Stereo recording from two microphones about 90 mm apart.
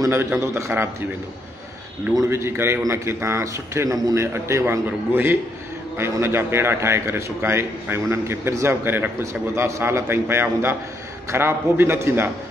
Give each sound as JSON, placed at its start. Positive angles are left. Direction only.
{"t": 0.0, "sound": "a man's voice", "side_deg": -25}
{"t": 2.2, "sound": "a man's voice", "side_deg": -25}